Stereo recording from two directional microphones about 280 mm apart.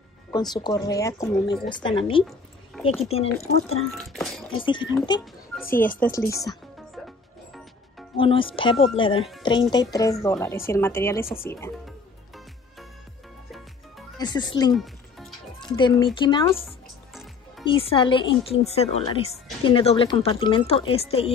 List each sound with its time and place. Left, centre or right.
0.3 s a woman's voice: centre
3.9 s speech: centre
4.6 s a woman's voice: centre
8.2 s a woman's voice: centre
14.1 s speech: centre
14.7 s music: centre
15.6 s a woman's voice: centre
16.6 s music: centre
17.6 s speech: centre